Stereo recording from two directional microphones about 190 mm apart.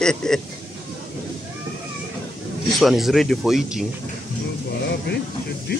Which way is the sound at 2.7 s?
Centre (ahead or behind).